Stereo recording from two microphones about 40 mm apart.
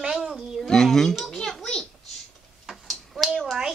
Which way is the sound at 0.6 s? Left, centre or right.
Centre.